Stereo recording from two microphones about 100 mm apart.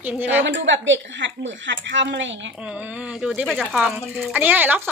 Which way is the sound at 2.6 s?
10° right (ahead or behind).